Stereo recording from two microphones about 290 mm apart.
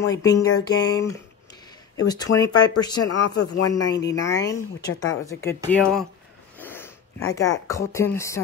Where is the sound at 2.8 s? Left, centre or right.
Centre.